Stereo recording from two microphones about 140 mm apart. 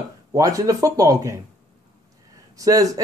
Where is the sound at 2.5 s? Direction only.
25° right (ahead or behind).